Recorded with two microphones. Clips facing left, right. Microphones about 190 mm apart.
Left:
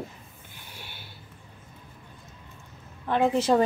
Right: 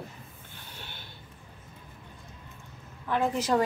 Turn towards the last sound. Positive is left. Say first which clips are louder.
# left 4 dB
turn(degrees=25)  # may be behind; listen again after turning